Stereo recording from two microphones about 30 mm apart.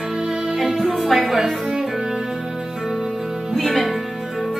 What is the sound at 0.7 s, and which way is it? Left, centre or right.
Speech, centre.